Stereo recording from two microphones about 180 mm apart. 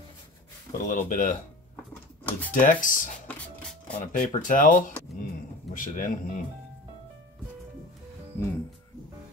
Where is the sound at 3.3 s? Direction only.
5° left (ahead or behind).